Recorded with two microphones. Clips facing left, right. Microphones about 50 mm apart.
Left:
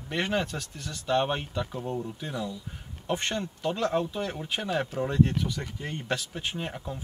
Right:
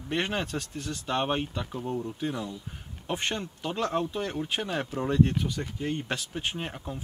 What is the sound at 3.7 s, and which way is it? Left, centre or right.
Speech, right.